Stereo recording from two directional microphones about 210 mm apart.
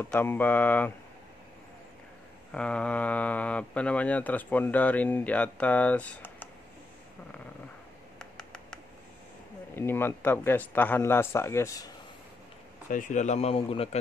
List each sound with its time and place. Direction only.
0.0 s speech: 10° left (ahead or behind)
2.5 s speech: 5° left (ahead or behind)
8.2 s a sound: 5° left (ahead or behind)
9.8 s speech: 10° left (ahead or behind)
12.9 s speech: 35° left (ahead or behind)